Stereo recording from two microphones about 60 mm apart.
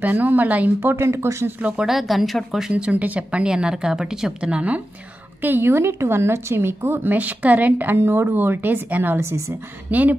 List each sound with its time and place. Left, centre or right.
0.0 s speech: right
0.7 s speech: right
1.6 s speech: centre
1.9 s speech: centre
2.7 s speech: right
5.4 s speech: right
8.0 s speech: right
9.2 s speech: right
9.8 s speech: right